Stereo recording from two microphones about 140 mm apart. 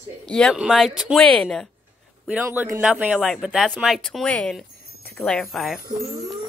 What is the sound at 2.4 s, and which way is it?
Speech, 20° right (ahead or behind).